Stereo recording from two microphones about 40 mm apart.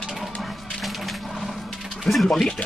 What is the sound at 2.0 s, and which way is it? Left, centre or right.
Speech, centre.